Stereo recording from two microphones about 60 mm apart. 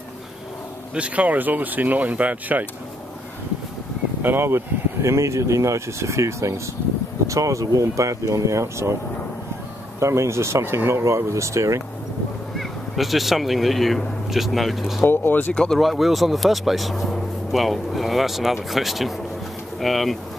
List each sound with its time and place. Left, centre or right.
0.9 s speech: right
4.2 s speech: right
9.9 s speech: right
12.5 s speech: centre
15.0 s speech: left
15.5 s speech: centre
15.8 s speech: centre